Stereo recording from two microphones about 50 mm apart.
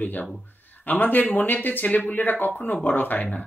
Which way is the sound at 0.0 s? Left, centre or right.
Left.